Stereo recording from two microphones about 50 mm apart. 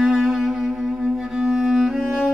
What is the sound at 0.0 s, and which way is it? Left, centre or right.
Music, centre.